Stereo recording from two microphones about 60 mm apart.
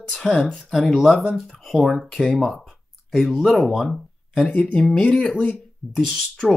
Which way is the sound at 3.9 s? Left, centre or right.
Centre.